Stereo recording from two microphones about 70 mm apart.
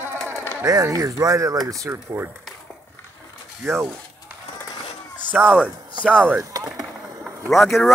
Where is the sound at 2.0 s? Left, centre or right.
Right.